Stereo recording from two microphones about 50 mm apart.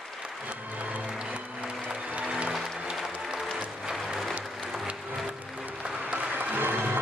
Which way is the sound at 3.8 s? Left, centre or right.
Centre.